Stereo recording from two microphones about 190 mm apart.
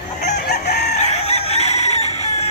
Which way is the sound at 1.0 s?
35° left (ahead or behind).